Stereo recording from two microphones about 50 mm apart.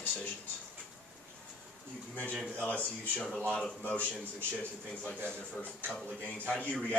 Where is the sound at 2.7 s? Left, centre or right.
Left.